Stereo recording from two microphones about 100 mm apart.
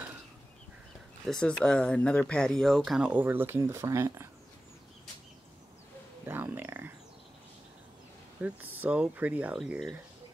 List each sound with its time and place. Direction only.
1.2 s speech: 5° left (ahead or behind); by 4.3 s 25° right (ahead or behind)
6.2 s a sound: 20° right (ahead or behind)
8.4 s speech: 15° right (ahead or behind)